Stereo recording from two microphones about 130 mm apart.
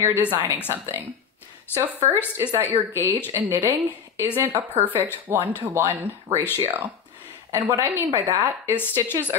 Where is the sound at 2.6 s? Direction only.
15° right (ahead or behind).